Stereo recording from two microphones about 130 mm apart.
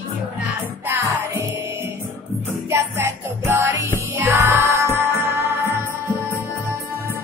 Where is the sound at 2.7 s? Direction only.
20° right (ahead or behind).